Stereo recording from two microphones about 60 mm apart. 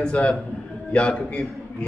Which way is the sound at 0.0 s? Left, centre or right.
Centre.